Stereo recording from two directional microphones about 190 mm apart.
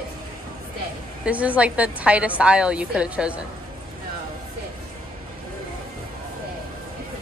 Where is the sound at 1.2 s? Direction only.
5° right (ahead or behind).